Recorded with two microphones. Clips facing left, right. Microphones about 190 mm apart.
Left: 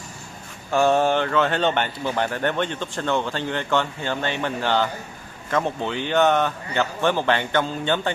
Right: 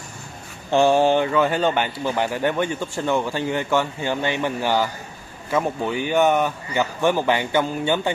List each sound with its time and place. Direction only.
0.7 s speech: 25° right (ahead or behind)
0.9 s speech: 10° right (ahead or behind)